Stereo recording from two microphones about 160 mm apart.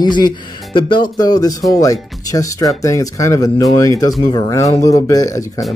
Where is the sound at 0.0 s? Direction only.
25° left (ahead or behind).